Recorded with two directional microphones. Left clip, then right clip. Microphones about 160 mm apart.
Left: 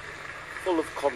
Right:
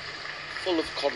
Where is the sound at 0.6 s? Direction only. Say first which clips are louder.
Left 1 dB; 35° left (ahead or behind).